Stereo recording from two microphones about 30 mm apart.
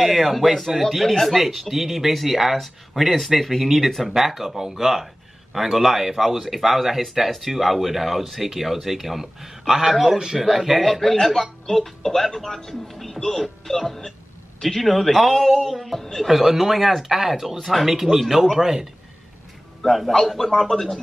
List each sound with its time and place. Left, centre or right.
0.0 s speech: centre
10.1 s speech: right
10.4 s speech: centre
16.0 s speech: centre
16.3 s speech: centre
17.6 s speech: centre
17.8 s speech: centre
20.1 s speech: centre